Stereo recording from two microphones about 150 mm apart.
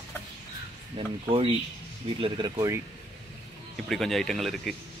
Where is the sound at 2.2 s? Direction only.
25° right (ahead or behind).